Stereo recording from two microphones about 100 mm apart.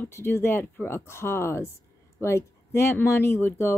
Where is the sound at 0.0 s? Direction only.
25° left (ahead or behind).